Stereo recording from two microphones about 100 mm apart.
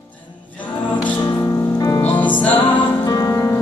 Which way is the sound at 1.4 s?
35° left (ahead or behind).